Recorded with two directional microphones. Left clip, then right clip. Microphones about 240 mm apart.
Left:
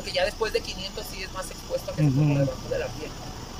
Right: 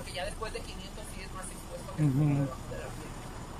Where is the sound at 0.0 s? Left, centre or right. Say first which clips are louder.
Left 12 dB; left.